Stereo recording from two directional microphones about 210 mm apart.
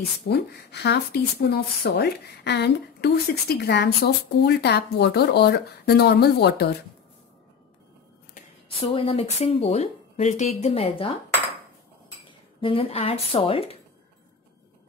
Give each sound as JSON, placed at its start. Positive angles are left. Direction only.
{"t": 0.3, "sound": "speech", "side_deg": 50}
{"t": 8.7, "sound": "speech", "side_deg": 30}
{"t": 12.3, "sound": "speech", "side_deg": 25}